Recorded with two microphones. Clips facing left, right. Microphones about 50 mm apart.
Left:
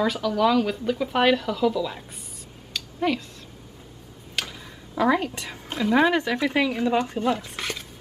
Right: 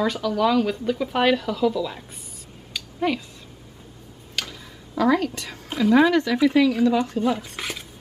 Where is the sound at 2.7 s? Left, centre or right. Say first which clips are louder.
Right 1 dB; centre.